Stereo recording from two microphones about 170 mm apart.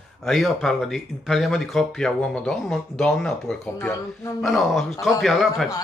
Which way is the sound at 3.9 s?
15° left (ahead or behind).